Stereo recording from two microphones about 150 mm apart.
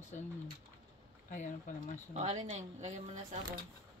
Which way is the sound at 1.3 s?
55° left (ahead or behind).